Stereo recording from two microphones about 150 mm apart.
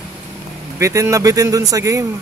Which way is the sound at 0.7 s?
20° right (ahead or behind).